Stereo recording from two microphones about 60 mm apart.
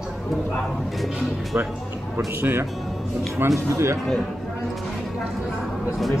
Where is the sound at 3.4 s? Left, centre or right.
Right.